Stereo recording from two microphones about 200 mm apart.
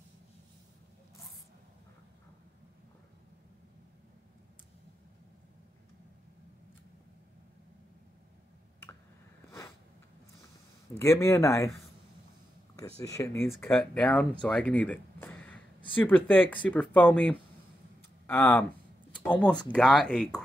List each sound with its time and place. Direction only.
11.0 s speech: 15° left (ahead or behind)
13.0 s speech: 15° left (ahead or behind)